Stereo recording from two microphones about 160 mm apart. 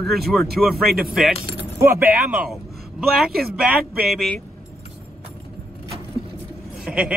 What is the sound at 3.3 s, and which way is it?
Speech, 75° right (ahead or behind).